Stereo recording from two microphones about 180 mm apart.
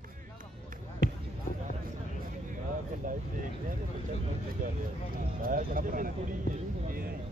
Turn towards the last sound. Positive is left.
turn(degrees=-55)  # may be behind; listen again after turning